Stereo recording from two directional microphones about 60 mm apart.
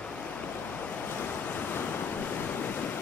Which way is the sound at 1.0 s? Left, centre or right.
Left.